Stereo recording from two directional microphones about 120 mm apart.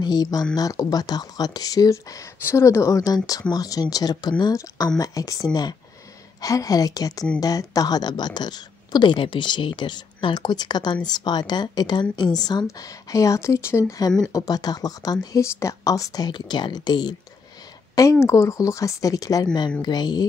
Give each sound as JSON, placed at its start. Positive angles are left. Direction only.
{"t": 0.0, "sound": "speech", "side_deg": 35}
{"t": 18.2, "sound": "speech", "side_deg": 25}